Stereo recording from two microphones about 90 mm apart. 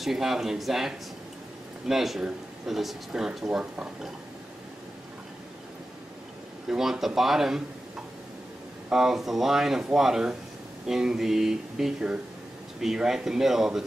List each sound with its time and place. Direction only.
0.0 s speech: 5° right (ahead or behind)
6.7 s speech: 5° right (ahead or behind)
8.8 s speech: 5° right (ahead or behind)